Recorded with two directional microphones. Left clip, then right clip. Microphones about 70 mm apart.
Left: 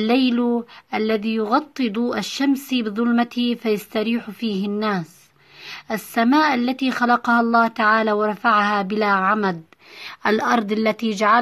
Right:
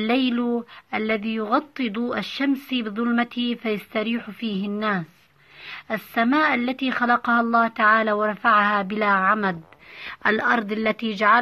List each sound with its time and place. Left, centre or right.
0.0 s speech: centre
10.0 s speech: left